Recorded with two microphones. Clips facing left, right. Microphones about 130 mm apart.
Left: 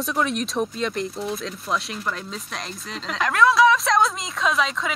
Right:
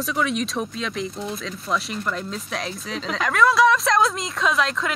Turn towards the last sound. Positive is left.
turn(degrees=0)  # may be behind; listen again after turning